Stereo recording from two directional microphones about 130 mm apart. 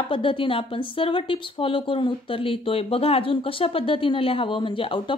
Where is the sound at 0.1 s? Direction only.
40° left (ahead or behind).